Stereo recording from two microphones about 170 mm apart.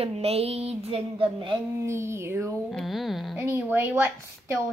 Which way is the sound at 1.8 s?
15° right (ahead or behind).